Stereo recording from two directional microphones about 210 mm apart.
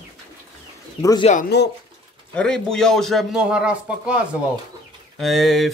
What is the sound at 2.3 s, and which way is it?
A man's voice, 5° left (ahead or behind).